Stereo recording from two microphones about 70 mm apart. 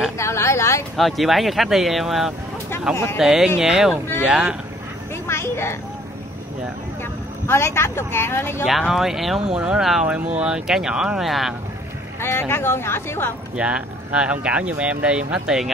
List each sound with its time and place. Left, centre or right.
0.2 s vehicle: left
0.9 s speech: centre
5.1 s a sound: left
7.0 s speech: left
8.6 s speech: centre
10.0 s speech: centre
12.2 s speech: left
13.6 s speech: centre